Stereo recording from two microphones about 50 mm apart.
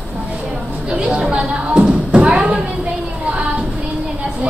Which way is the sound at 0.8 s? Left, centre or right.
Centre.